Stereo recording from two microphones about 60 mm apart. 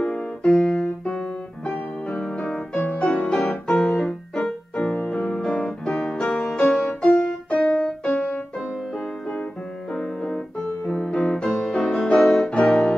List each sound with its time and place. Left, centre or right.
0.0 s music: centre
1.7 s keyboard: centre
3.0 s music: centre
9.9 s keyboard: centre
10.9 s music: centre